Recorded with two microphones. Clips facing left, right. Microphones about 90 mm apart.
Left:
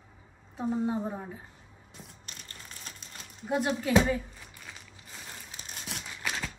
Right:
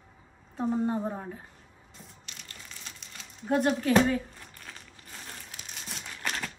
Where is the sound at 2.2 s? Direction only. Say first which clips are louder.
Even; 40° left (ahead or behind).